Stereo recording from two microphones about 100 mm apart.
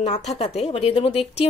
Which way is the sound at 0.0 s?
90° left.